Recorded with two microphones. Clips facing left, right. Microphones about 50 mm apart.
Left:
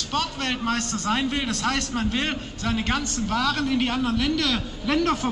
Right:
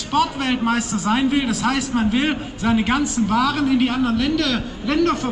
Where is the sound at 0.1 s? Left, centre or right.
Centre.